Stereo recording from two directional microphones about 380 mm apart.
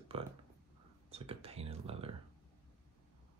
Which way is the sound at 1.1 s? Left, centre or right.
Centre.